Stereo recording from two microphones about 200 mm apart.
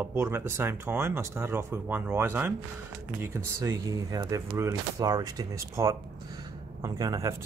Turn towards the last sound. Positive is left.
turn(degrees=-20)  # may be behind; listen again after turning